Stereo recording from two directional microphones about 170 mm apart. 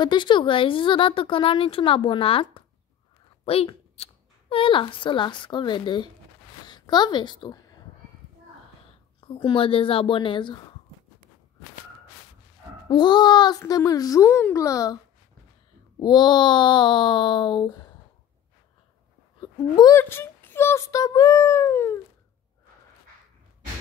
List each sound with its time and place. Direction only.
0.0 s a woman's voice: 25° left (ahead or behind)
9.2 s a woman's voice: 30° left (ahead or behind)
12.8 s a child's voice: 25° left (ahead or behind)
16.0 s a child's voice: 25° left (ahead or behind)
19.4 s speech: 25° left (ahead or behind)
20.0 s speech: 15° left (ahead or behind)